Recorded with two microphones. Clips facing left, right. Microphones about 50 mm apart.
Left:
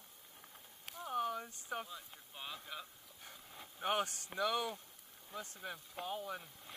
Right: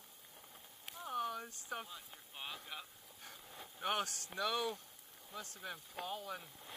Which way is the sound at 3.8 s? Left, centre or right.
Left.